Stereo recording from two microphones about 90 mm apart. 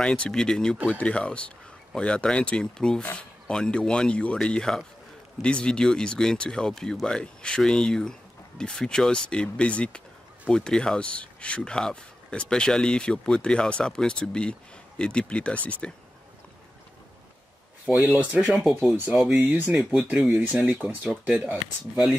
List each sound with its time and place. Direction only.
0.0 s speech: 10° left (ahead or behind)
17.8 s speech: 15° right (ahead or behind)
18.5 s speech: centre (ahead or behind)
19.2 s speech: 20° right (ahead or behind)